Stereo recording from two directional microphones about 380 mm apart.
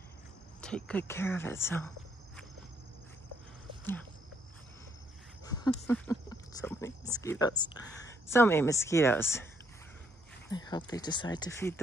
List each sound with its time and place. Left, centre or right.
0.6 s speech: centre
5.4 s speech: centre
10.5 s speech: centre